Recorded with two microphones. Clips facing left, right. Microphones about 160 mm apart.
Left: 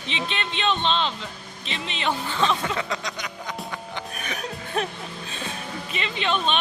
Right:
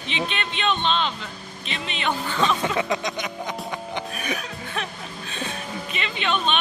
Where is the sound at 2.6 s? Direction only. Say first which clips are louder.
Right 4 dB; 20° right (ahead or behind).